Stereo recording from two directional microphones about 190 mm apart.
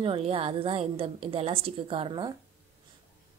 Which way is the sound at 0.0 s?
30° right (ahead or behind).